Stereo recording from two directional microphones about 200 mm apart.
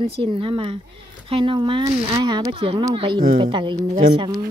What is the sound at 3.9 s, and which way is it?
Speech, 45° right (ahead or behind).